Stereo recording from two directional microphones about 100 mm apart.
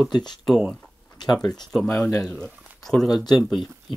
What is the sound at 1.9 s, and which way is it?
Speech, 30° left (ahead or behind).